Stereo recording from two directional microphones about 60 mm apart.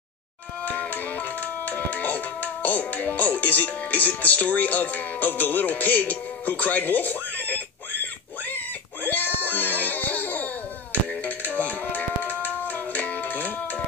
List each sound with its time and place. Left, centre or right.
0.7 s music: left